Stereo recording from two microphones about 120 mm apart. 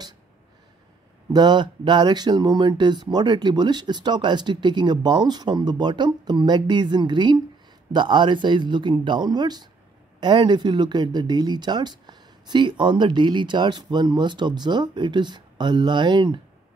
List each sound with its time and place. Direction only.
1.3 s speech: 35° right (ahead or behind)